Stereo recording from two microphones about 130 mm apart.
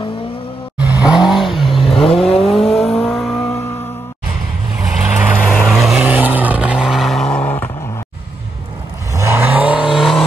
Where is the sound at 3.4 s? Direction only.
20° left (ahead or behind).